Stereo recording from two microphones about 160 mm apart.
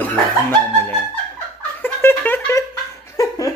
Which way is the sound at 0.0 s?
10° left (ahead or behind).